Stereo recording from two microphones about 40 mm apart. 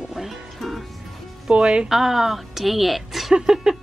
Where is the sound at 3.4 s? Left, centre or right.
Centre.